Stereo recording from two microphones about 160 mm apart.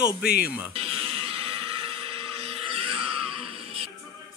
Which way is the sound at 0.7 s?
35° right (ahead or behind).